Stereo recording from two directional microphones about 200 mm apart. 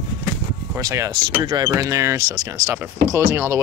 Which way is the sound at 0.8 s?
15° right (ahead or behind).